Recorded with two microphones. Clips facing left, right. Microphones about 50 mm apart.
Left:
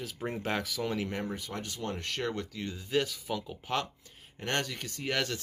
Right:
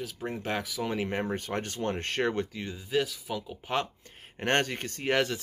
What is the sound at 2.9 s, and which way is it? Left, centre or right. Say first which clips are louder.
Speech: right 1 dB; centre.